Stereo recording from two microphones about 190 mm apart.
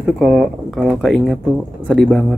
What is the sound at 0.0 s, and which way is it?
Speech, centre (ahead or behind).